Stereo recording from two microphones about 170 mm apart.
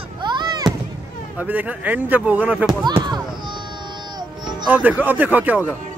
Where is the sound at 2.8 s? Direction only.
25° right (ahead or behind).